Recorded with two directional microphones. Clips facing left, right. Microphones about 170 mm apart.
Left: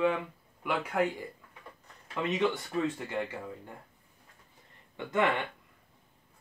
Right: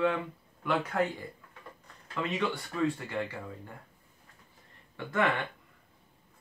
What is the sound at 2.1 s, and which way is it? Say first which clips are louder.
Speech: left 3 dB; 20° left (ahead or behind).